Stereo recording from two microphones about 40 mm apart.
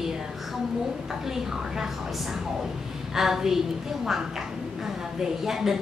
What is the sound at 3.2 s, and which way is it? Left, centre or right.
A woman's voice, centre.